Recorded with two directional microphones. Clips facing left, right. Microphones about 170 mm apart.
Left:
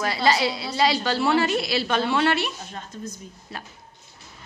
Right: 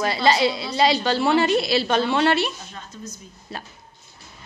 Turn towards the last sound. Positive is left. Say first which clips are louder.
# right 2 dB
turn(degrees=-30)  # may be behind; listen again after turning